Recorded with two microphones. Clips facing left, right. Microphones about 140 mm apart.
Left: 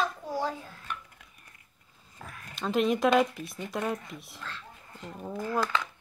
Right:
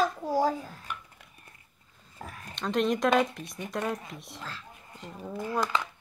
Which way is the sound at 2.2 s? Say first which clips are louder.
Right 3 dB; 35° right (ahead or behind).